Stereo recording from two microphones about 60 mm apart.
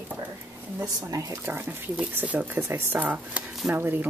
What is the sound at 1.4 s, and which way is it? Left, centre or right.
Speech, right.